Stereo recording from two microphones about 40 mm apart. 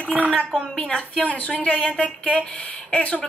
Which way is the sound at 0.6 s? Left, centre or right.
Left.